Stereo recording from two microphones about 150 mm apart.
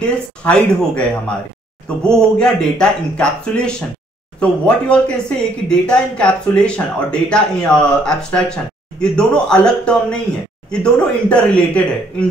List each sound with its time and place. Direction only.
0.4 s speech: 5° left (ahead or behind)